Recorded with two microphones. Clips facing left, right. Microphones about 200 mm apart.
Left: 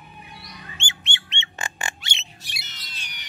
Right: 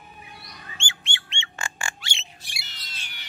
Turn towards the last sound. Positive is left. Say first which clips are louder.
# left 1 dB
turn(degrees=15)  # may be behind; listen again after turning